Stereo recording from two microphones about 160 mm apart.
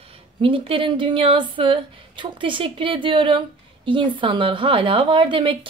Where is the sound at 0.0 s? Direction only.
35° right (ahead or behind).